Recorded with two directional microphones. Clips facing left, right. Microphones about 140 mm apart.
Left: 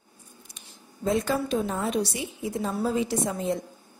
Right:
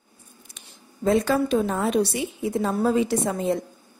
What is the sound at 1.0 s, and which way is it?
A woman's voice, 70° right (ahead or behind).